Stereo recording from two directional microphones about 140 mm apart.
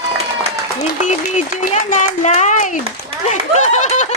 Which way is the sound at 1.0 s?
55° left (ahead or behind).